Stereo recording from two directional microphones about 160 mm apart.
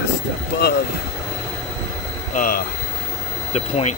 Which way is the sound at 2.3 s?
60° left (ahead or behind).